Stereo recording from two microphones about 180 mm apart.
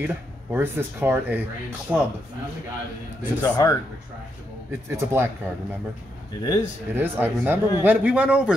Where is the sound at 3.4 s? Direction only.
20° left (ahead or behind).